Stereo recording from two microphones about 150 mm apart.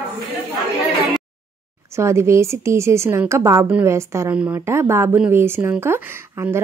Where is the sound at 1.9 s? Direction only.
20° right (ahead or behind).